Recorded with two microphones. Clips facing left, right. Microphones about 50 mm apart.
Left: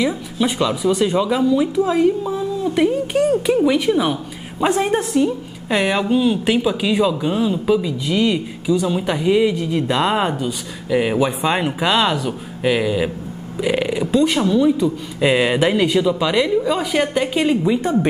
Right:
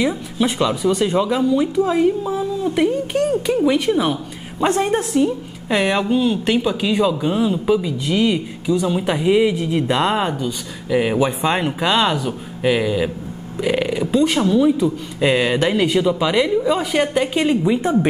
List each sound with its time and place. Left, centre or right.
0.0 s speech: centre